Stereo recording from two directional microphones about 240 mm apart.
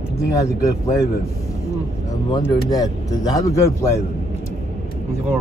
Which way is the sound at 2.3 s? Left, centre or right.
Centre.